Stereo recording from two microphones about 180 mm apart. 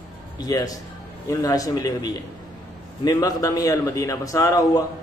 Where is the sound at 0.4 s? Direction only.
20° left (ahead or behind).